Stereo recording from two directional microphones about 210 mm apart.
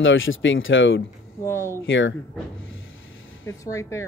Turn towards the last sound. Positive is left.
turn(degrees=15)  # may be behind; listen again after turning